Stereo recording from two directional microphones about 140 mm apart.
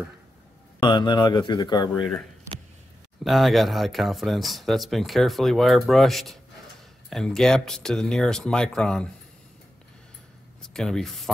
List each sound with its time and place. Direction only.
0.7 s speech: 35° left (ahead or behind)
3.3 s speech: centre (ahead or behind)
10.7 s speech: 5° left (ahead or behind)